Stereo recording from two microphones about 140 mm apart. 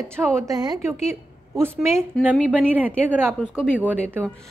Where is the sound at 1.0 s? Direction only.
20° right (ahead or behind).